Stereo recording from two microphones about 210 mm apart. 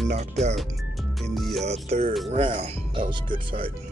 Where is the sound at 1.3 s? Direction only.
Centre (ahead or behind).